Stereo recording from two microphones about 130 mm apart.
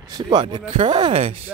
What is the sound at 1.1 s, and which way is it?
Speech, 50° right (ahead or behind).